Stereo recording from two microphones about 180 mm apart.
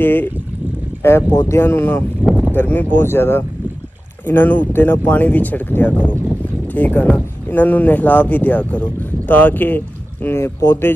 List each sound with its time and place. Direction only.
0.0 s speech: 10° left (ahead or behind)
2.2 s speech: 5° right (ahead or behind)
2.5 s speech: 10° left (ahead or behind)